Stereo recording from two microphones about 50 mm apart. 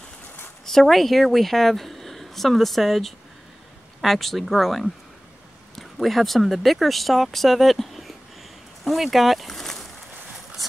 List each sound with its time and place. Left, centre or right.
0.7 s a woman's voice: centre